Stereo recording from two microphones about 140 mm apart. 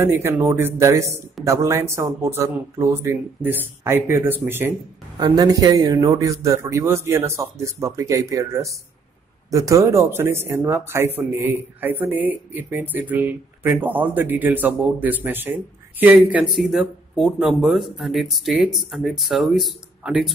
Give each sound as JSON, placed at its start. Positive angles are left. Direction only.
{"t": 0.0, "sound": "a man's voice", "side_deg": -15}
{"t": 5.3, "sound": "a man's voice", "side_deg": -30}
{"t": 16.3, "sound": "speech", "side_deg": 0}